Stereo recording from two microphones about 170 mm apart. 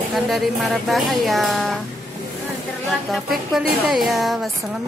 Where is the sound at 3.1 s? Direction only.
Centre (ahead or behind).